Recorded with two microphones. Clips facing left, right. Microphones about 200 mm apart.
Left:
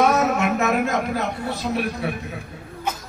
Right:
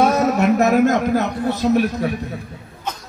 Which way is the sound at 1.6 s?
45° right (ahead or behind).